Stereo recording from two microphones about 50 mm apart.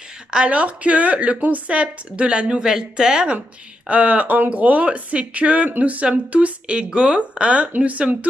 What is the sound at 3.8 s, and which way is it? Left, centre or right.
Speech, right.